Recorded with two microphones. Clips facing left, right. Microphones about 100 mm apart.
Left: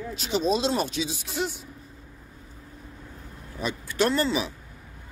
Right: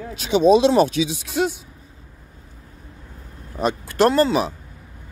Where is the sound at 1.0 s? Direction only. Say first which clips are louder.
Right 8 dB; 65° right (ahead or behind).